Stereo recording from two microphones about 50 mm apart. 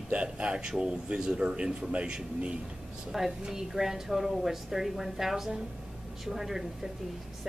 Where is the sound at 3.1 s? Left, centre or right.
Centre.